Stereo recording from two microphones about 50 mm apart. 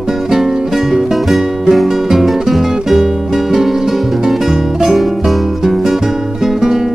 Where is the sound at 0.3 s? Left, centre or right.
Centre.